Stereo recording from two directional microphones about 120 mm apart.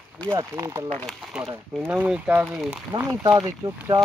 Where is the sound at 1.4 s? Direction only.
25° right (ahead or behind).